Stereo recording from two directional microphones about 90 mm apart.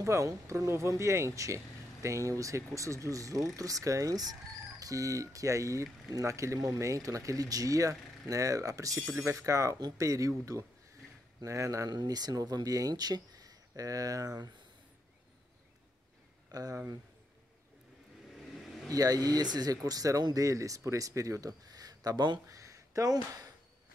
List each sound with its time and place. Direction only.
0.0 s speech: 35° right (ahead or behind)
16.5 s speech: 40° right (ahead or behind)
18.3 s vehicle: centre (ahead or behind)
18.9 s speech: 45° right (ahead or behind)
22.5 s a sound: 35° right (ahead or behind)